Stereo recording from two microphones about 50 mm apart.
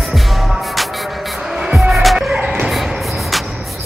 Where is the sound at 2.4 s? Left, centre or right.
Right.